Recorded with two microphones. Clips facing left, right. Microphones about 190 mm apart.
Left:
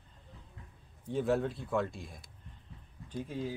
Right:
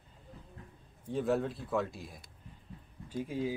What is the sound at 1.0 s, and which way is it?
Speech, centre (ahead or behind).